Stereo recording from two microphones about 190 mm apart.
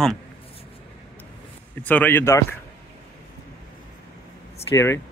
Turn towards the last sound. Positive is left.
turn(degrees=15)  # may be behind; listen again after turning